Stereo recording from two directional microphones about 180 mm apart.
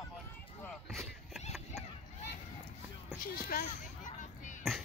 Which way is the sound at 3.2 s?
55° left (ahead or behind).